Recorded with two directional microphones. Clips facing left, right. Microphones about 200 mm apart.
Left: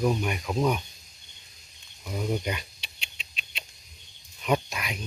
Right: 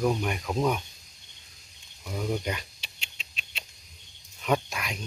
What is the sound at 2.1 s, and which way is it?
Speech, 10° left (ahead or behind).